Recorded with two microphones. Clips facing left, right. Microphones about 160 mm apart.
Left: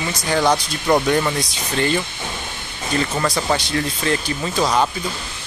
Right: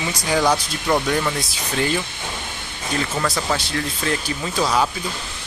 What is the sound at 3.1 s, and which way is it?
Speech, 5° left (ahead or behind).